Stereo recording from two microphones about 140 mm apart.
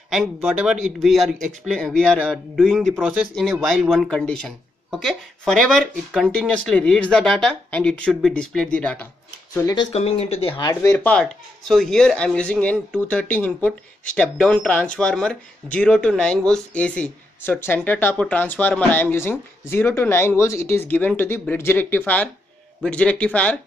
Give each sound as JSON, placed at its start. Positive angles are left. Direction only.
{"t": 0.1, "sound": "speech", "side_deg": -5}
{"t": 9.6, "sound": "speech", "side_deg": 25}
{"t": 9.9, "sound": "speech", "side_deg": 45}
{"t": 10.7, "sound": "speech", "side_deg": 20}
{"t": 11.1, "sound": "speech", "side_deg": 5}